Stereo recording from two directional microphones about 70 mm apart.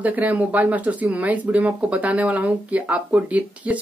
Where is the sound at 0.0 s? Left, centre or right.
Right.